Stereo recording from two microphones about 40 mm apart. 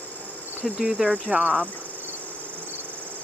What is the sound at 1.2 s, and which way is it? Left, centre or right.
Speech, right.